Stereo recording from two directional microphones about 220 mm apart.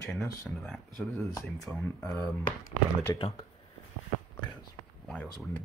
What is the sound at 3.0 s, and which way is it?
Speech, 15° left (ahead or behind).